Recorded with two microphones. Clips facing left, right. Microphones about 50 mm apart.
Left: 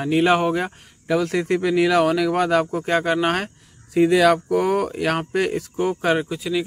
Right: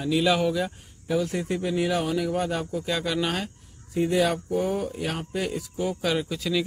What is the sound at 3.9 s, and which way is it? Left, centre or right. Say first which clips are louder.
Speech: left 8 dB; left.